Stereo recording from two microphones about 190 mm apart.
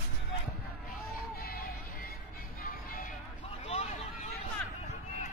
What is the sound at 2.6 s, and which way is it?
Music, 45° left (ahead or behind).